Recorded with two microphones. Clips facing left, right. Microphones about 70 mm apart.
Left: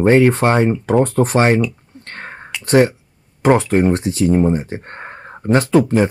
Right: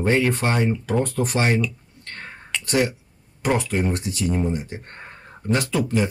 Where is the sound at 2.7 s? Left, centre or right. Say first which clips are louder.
Left 9 dB; left.